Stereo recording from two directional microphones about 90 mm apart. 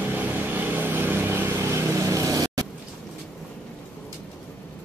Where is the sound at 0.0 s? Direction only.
20° right (ahead or behind); by 2.6 s 40° right (ahead or behind).